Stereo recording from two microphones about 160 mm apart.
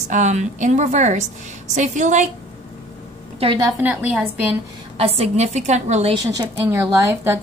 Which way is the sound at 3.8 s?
10° right (ahead or behind).